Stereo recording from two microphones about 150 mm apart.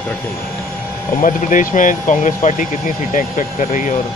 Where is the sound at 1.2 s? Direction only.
60° left (ahead or behind).